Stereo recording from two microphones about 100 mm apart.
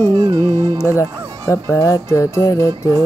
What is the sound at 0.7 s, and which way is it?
Speech, 30° left (ahead or behind).